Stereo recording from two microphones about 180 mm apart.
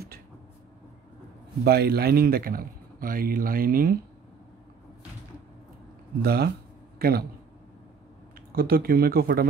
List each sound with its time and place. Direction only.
1.6 s a man's voice: 60° right (ahead or behind)
6.2 s speech: 60° right (ahead or behind)
8.5 s speech: 55° right (ahead or behind)